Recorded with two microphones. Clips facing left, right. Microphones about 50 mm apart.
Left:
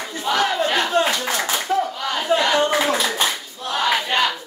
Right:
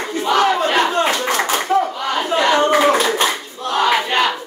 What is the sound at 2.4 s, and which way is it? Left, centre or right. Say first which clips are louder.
Clapping: right 9 dB; right.